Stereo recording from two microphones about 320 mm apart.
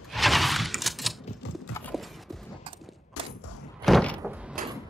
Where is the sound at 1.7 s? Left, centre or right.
Centre.